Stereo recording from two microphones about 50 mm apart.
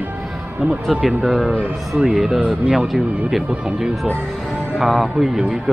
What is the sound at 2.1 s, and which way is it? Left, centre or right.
Speech, centre.